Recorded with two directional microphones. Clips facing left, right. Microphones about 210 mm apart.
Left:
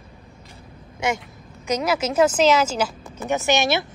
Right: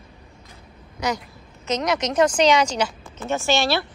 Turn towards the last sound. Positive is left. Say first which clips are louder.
# left 1 dB
turn(degrees=20)  # may be behind; listen again after turning